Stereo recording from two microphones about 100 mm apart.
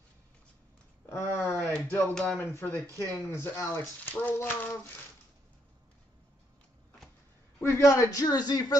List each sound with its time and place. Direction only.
1.0 s a sound: 25° left (ahead or behind)
1.7 s speech: 10° left (ahead or behind)
2.3 s speech: 20° left (ahead or behind)
7.6 s speech: 30° left (ahead or behind)